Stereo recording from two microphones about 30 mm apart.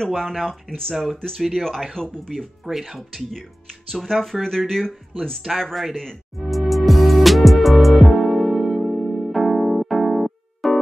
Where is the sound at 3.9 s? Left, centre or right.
Centre.